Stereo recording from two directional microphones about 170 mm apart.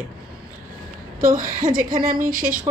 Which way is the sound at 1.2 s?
55° right (ahead or behind).